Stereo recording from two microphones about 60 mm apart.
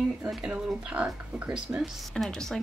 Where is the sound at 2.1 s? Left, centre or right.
Centre.